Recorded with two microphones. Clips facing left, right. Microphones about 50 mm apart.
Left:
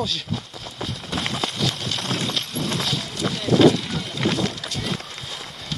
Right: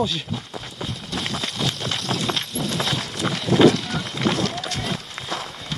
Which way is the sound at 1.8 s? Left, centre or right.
Right.